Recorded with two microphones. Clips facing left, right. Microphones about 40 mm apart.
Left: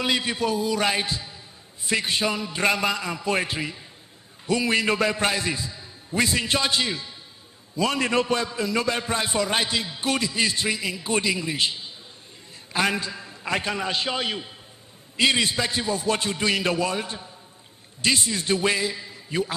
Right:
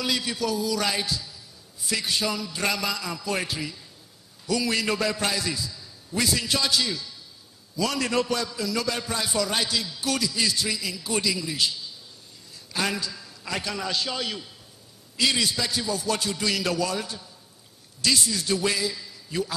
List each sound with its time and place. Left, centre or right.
0.0 s a man's voice: left